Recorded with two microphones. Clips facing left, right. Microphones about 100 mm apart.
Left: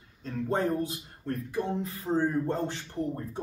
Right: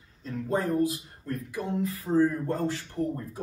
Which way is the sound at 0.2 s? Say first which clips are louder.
Even; 30° left (ahead or behind).